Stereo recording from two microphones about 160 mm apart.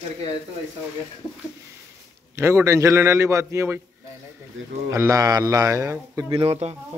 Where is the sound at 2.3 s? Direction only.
15° right (ahead or behind).